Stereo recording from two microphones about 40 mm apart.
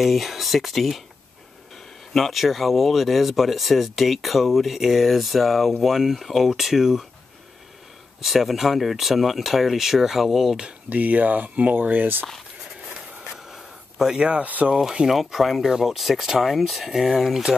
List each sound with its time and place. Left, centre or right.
0.0 s speech: centre
2.1 s speech: centre
8.2 s speech: centre
10.9 s speech: right
13.4 s a sound: centre
14.2 s speech: right
15.0 s speech: centre